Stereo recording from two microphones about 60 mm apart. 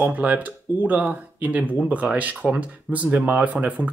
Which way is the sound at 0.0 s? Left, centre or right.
Right.